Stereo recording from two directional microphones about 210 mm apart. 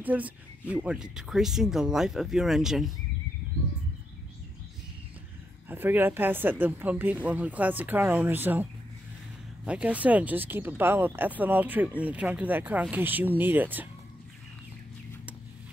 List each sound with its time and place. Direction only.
0.0 s speech: 10° right (ahead or behind)
5.7 s speech: 10° right (ahead or behind)
9.7 s speech: 5° right (ahead or behind)